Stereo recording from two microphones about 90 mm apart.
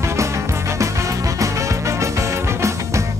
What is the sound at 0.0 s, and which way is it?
Music, 35° right (ahead or behind).